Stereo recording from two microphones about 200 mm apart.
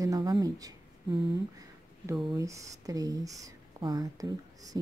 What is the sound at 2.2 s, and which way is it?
Speech, 15° right (ahead or behind).